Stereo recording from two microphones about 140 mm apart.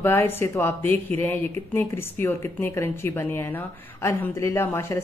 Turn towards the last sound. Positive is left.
turn(degrees=20)  # may be behind; listen again after turning